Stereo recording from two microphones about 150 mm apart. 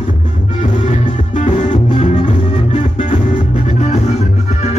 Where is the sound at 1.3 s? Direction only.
55° left (ahead or behind).